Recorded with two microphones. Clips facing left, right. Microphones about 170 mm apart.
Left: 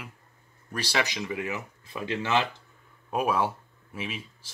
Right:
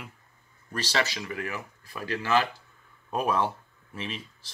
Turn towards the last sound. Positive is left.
turn(degrees=10)  # may be behind; listen again after turning